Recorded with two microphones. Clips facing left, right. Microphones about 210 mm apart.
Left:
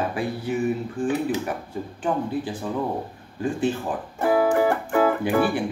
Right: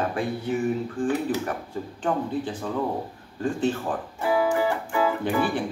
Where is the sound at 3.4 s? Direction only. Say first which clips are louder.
Left 1 dB; 10° left (ahead or behind).